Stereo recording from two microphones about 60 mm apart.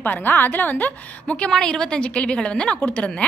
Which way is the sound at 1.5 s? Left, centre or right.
Centre.